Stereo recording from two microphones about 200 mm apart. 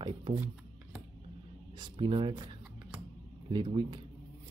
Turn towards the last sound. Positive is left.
turn(degrees=-25)  # may be behind; listen again after turning